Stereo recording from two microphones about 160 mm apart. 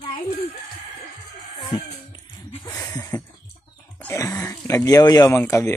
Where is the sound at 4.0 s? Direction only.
15° left (ahead or behind).